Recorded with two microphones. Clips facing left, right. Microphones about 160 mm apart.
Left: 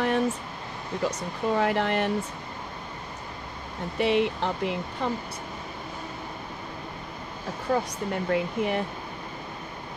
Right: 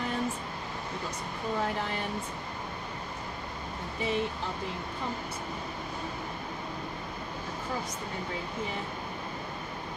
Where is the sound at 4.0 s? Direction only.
75° left (ahead or behind).